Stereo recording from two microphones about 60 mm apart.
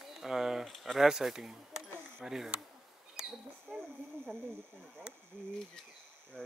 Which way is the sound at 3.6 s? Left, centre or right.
Centre.